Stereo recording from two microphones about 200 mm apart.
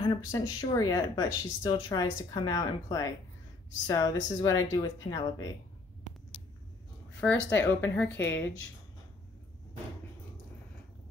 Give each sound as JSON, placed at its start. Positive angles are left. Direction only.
{"t": 0.0, "sound": "speech", "side_deg": 20}
{"t": 7.3, "sound": "speech", "side_deg": 65}